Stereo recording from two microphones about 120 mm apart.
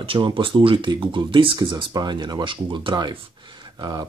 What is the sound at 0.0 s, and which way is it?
Speech, 45° right (ahead or behind).